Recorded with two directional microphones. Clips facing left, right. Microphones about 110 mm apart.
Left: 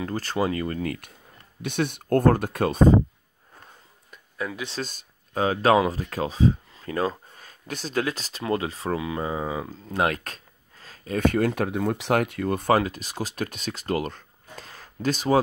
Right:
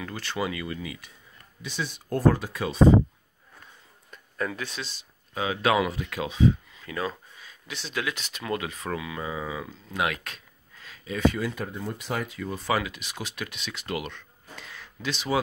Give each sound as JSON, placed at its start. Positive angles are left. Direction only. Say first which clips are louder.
{"t": 0.0, "sound": "speech", "louder": "left 5 dB", "side_deg": 40}
{"t": 4.1, "sound": "a sound", "louder": "right 1 dB", "side_deg": 5}
{"t": 4.8, "sound": "speech", "louder": "left 5 dB", "side_deg": 45}